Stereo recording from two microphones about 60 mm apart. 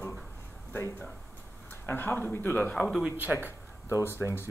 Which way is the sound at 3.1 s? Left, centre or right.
Right.